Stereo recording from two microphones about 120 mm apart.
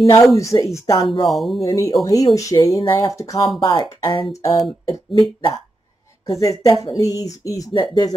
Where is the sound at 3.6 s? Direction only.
40° left (ahead or behind).